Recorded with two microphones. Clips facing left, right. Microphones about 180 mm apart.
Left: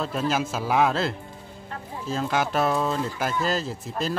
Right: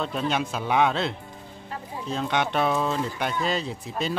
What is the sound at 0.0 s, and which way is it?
Speech, centre (ahead or behind).